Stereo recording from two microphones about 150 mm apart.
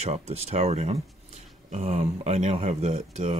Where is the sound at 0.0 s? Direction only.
45° right (ahead or behind).